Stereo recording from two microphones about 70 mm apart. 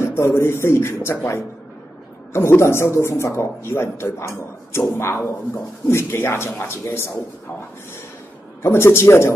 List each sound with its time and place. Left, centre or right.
0.0 s a man's voice: left
2.3 s a man's voice: left
8.6 s a man's voice: left